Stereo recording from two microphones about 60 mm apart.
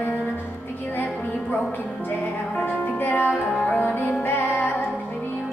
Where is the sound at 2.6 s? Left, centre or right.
Left.